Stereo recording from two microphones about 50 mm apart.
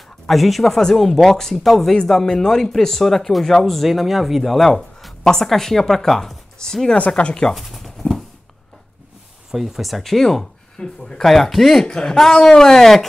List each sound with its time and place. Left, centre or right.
0.3 s speech: centre
7.5 s pigeon: centre
9.5 s speech: centre